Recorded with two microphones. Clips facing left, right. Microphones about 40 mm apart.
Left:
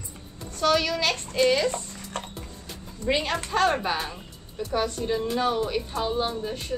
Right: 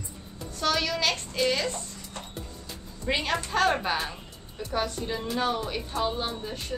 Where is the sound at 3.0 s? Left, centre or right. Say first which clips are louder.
Left 2 dB; centre.